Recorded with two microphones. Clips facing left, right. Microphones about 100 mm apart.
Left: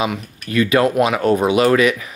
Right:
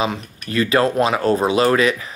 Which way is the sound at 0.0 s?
30° right (ahead or behind).